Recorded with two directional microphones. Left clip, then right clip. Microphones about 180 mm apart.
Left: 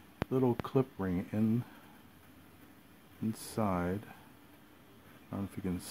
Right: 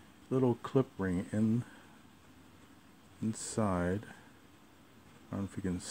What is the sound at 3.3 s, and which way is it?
Speech, 15° right (ahead or behind).